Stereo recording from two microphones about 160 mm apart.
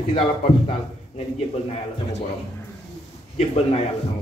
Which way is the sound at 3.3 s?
40° left (ahead or behind).